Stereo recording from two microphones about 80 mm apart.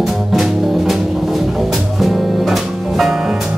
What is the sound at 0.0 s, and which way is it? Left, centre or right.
Music, centre.